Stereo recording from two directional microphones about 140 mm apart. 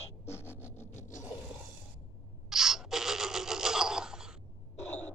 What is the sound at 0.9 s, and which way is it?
Scrape, 60° left (ahead or behind).